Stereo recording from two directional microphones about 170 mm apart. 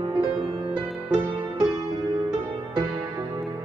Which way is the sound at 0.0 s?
25° right (ahead or behind).